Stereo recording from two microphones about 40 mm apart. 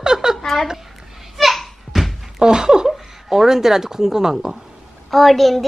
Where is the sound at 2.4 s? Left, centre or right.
Centre.